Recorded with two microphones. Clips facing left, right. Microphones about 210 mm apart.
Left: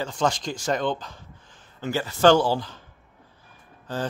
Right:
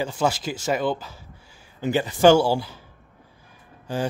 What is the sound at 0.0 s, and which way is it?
Speech, 5° right (ahead or behind).